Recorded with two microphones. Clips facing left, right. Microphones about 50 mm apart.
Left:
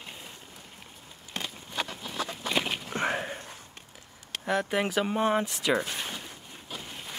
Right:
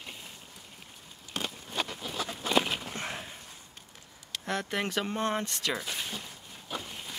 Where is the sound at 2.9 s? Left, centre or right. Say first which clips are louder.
Left 8 dB; left.